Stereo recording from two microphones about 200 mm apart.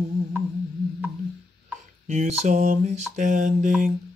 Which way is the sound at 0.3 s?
10° right (ahead or behind).